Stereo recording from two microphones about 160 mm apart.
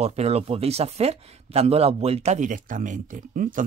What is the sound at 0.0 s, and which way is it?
Speech, 40° right (ahead or behind).